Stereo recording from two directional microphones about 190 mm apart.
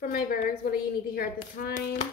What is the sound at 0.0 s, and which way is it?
A woman's voice, 50° left (ahead or behind).